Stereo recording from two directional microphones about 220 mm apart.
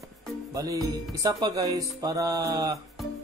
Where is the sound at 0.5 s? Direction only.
15° right (ahead or behind).